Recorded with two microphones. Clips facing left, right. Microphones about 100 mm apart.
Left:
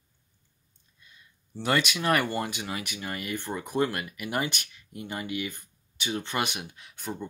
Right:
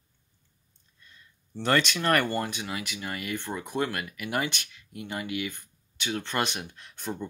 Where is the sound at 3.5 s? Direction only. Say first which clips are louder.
Left 2 dB; centre (ahead or behind).